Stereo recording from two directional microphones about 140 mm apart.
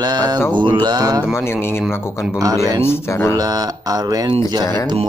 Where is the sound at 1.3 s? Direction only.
15° left (ahead or behind).